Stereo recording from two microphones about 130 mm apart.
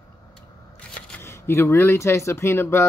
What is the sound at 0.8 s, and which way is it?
Scissors, 10° left (ahead or behind).